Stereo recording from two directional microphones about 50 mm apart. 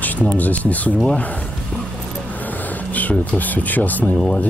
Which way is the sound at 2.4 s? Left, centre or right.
Left.